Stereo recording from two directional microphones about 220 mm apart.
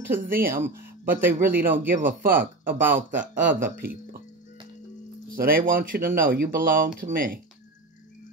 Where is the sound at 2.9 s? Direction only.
35° right (ahead or behind).